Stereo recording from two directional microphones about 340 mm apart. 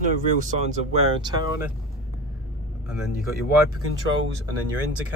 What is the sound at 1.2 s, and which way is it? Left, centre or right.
Speech, centre.